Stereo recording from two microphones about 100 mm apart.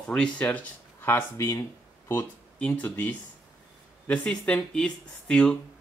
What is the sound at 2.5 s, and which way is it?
Speech, 10° left (ahead or behind).